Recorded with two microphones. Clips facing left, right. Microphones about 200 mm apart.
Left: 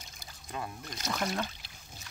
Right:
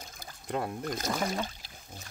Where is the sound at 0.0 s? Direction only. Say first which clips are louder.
Right 5 dB; 50° right (ahead or behind).